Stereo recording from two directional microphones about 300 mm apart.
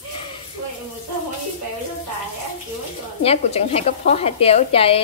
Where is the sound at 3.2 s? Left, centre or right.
Centre.